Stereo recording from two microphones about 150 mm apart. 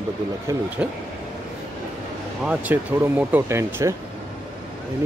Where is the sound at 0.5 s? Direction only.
20° right (ahead or behind).